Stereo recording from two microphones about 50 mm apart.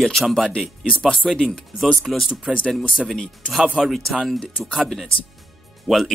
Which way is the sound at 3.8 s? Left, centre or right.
Centre.